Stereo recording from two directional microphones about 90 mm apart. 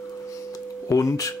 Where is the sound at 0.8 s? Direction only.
35° left (ahead or behind).